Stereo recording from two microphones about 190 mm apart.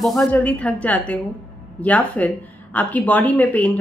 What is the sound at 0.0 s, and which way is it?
Speech, centre (ahead or behind).